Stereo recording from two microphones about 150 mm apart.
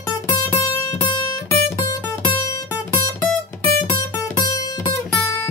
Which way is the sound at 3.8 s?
25° left (ahead or behind).